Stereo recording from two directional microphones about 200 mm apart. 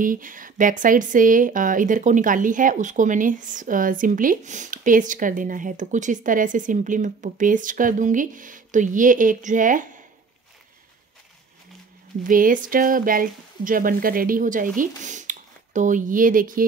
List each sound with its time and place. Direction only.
0.0 s speech: 40° right (ahead or behind)
12.3 s speech: 45° right (ahead or behind)